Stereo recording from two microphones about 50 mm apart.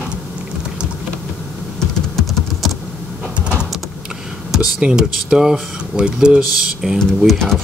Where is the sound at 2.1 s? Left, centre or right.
Centre.